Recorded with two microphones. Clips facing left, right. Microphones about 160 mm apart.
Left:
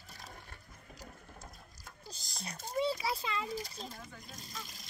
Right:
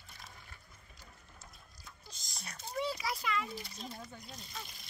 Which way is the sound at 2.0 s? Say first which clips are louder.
Left 5 dB; 30° left (ahead or behind).